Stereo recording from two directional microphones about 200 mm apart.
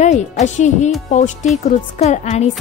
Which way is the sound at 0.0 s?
35° left (ahead or behind).